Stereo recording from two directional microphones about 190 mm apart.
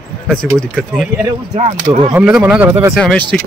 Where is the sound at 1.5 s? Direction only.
35° right (ahead or behind).